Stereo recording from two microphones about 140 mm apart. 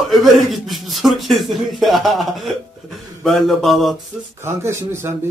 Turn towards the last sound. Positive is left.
turn(degrees=-20)  # may be behind; listen again after turning